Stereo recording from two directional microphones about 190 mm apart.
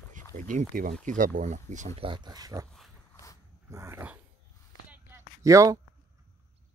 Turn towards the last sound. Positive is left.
turn(degrees=-15)  # may be behind; listen again after turning